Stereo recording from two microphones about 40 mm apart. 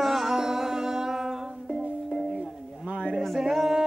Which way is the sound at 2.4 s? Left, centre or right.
Right.